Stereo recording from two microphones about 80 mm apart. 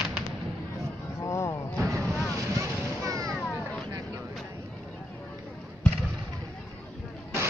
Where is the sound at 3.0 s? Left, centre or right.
Right.